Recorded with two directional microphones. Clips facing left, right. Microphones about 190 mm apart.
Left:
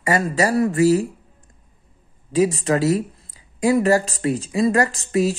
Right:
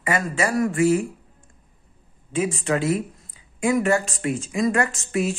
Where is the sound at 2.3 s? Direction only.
35° left (ahead or behind).